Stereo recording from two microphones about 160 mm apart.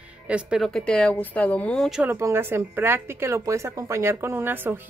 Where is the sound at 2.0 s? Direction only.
15° right (ahead or behind).